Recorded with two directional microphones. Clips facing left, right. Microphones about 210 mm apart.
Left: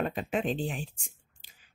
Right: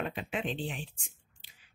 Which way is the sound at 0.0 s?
45° left (ahead or behind).